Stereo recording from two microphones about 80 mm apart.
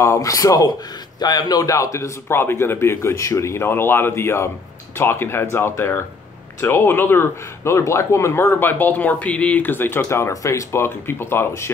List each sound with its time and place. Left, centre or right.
0.0 s speech: left